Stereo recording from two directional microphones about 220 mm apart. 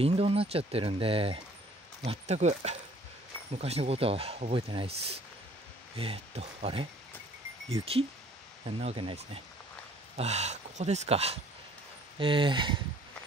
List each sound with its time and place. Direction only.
0.0 s speech: 25° right (ahead or behind)
8.6 s speech: 25° right (ahead or behind)